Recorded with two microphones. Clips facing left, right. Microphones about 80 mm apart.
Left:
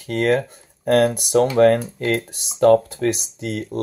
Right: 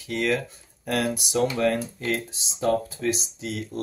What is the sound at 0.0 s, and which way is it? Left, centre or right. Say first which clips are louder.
Speech: left 6 dB; left.